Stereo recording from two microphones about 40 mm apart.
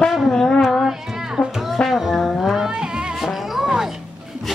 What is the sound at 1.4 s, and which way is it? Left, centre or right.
Music, left.